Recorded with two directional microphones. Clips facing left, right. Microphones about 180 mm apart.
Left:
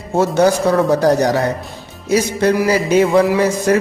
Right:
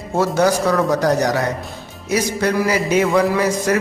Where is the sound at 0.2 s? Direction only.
30° left (ahead or behind).